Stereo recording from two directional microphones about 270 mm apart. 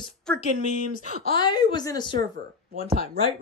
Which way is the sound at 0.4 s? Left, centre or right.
Left.